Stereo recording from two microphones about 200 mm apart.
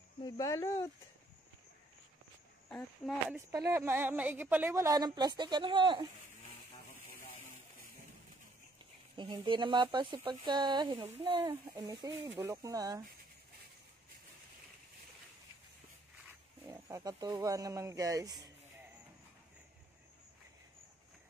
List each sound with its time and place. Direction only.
0.2 s speech: 15° left (ahead or behind)
2.7 s speech: centre (ahead or behind)
3.3 s a woman's voice: 15° right (ahead or behind)
9.1 s a woman's voice: 25° right (ahead or behind)
16.6 s a woman's voice: 15° right (ahead or behind)